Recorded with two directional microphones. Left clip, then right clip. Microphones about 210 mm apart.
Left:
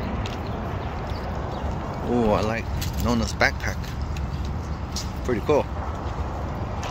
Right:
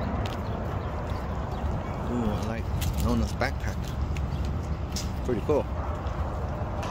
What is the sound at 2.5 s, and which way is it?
Speech, 5° left (ahead or behind).